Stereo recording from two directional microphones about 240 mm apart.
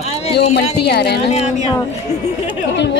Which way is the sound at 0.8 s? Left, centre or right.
Left.